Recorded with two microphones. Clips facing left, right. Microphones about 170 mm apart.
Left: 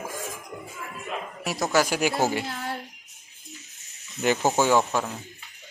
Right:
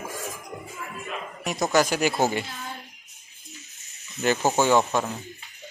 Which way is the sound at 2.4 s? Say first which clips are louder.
Left 5 dB; 70° left (ahead or behind).